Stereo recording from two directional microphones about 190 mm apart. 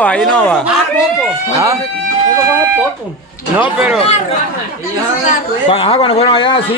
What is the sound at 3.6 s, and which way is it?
Speech, 5° right (ahead or behind).